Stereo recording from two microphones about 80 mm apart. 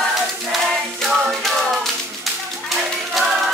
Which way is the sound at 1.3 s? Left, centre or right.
Centre.